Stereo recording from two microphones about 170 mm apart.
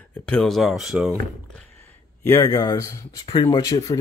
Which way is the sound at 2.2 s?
15° left (ahead or behind).